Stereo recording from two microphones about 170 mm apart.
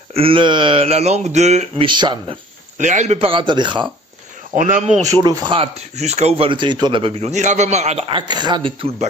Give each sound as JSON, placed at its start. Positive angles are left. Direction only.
{"t": 0.1, "sound": "speech", "side_deg": -30}
{"t": 1.9, "sound": "speech", "side_deg": -25}
{"t": 2.8, "sound": "speech", "side_deg": -45}
{"t": 4.6, "sound": "speech", "side_deg": -50}
{"t": 5.0, "sound": "speech", "side_deg": -20}
{"t": 8.2, "sound": "speech", "side_deg": -25}